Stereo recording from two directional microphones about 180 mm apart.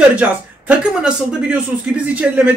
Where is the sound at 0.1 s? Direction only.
10° right (ahead or behind).